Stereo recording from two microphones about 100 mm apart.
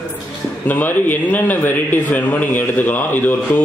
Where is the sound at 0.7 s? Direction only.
20° left (ahead or behind).